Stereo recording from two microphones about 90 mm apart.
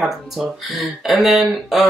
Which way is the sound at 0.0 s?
5° right (ahead or behind).